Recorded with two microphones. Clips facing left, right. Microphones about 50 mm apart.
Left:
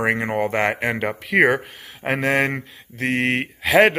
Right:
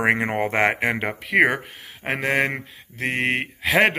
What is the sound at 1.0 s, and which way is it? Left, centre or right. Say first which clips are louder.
Speech: left 2 dB; centre.